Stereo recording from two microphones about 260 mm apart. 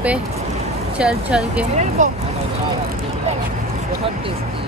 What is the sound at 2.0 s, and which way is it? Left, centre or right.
Speech, right.